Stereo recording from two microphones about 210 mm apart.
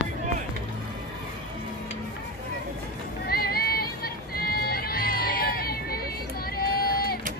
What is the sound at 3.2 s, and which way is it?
Music, 45° left (ahead or behind).